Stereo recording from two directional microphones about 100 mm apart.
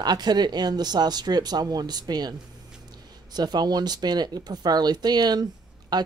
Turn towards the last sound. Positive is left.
turn(degrees=-45)  # may be behind; listen again after turning